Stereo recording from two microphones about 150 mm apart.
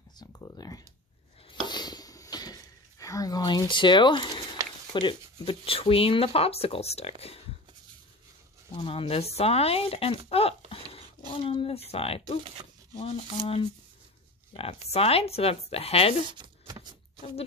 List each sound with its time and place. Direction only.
0.2 s speech: 25° left (ahead or behind)
1.7 s dishes: 30° left (ahead or behind)
4.9 s speech: 35° left (ahead or behind)
8.7 s speech: 40° left (ahead or behind)
16.3 s a sound: 25° right (ahead or behind)